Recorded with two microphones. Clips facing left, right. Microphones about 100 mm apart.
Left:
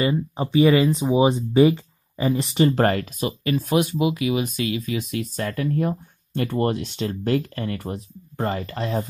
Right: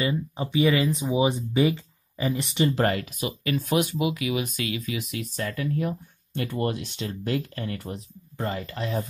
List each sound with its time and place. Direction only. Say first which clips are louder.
0.7 s speech: left 5 dB; 25° left (ahead or behind)
2.5 s speech: left 4 dB; 45° left (ahead or behind)
3.5 s speech: left 3 dB; 20° left (ahead or behind)
4.8 s speech: left 5 dB; 40° left (ahead or behind)